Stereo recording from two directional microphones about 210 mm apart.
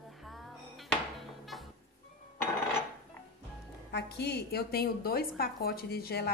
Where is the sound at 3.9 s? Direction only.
50° left (ahead or behind).